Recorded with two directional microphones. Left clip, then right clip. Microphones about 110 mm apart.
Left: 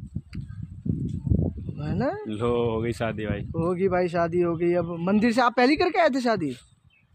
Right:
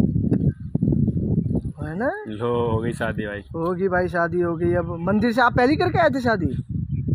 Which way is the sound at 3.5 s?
5° left (ahead or behind).